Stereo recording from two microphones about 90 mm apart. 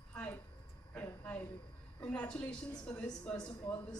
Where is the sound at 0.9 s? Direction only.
15° left (ahead or behind).